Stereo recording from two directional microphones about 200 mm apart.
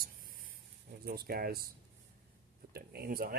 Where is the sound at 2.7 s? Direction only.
50° right (ahead or behind).